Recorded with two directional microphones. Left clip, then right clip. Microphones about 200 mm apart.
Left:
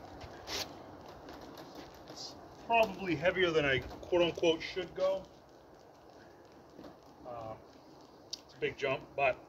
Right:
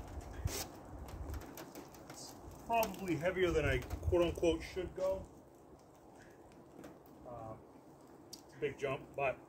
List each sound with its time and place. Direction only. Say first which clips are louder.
2.7 s speech: left 5 dB; 5° right (ahead or behind)
8.5 s speech: left 4 dB; 10° right (ahead or behind)